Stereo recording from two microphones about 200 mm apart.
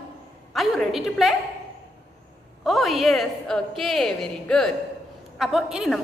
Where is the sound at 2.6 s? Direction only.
Centre (ahead or behind).